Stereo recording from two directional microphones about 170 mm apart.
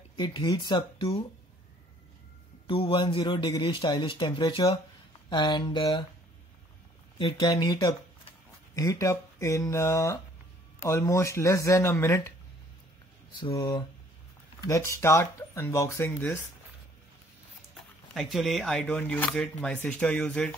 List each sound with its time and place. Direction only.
0.1 s speech: 25° left (ahead or behind)
2.6 s speech: 30° left (ahead or behind)
7.2 s speech: 25° left (ahead or behind)
13.4 s speech: 20° left (ahead or behind)
18.1 s speech: centre (ahead or behind)